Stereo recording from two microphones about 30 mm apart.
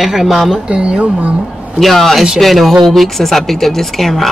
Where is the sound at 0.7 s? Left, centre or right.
Right.